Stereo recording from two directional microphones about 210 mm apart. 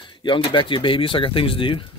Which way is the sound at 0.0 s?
20° left (ahead or behind).